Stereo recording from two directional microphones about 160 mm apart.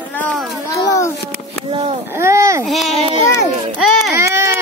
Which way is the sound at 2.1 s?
15° right (ahead or behind).